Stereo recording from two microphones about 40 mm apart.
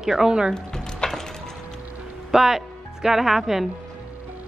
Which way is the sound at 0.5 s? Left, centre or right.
Centre.